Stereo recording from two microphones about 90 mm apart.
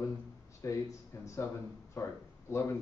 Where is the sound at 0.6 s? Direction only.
35° left (ahead or behind).